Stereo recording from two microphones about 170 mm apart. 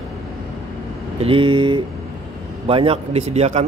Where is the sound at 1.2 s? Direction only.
35° right (ahead or behind).